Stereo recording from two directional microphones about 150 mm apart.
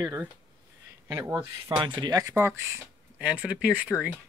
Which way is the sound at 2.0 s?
25° right (ahead or behind).